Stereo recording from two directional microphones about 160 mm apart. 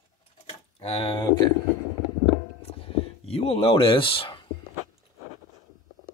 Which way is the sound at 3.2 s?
40° left (ahead or behind).